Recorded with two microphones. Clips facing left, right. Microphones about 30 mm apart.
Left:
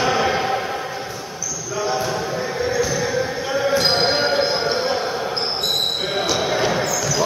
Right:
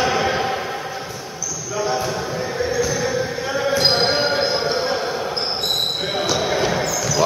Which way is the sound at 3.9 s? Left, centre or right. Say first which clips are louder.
Even; centre.